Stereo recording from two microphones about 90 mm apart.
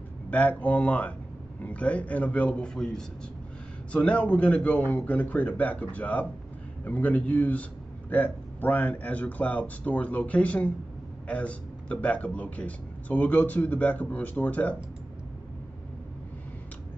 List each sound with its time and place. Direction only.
0.3 s a man's voice: 15° left (ahead or behind)